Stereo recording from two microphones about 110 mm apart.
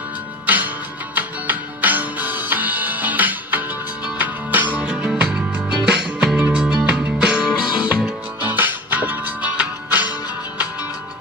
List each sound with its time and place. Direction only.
0.5 s music: 15° right (ahead or behind)